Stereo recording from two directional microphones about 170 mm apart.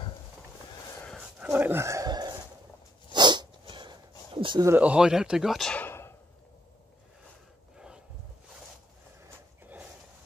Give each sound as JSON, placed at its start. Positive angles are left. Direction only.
{"t": 1.4, "sound": "dog", "side_deg": -10}
{"t": 3.1, "sound": "sneeze", "side_deg": -25}
{"t": 4.4, "sound": "speech", "side_deg": -30}
{"t": 4.6, "sound": "speech", "side_deg": -10}